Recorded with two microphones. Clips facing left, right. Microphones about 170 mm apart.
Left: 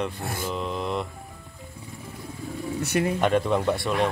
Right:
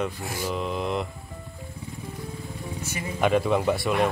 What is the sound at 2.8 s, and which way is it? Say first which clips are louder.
Speech: left 11 dB; 70° left (ahead or behind).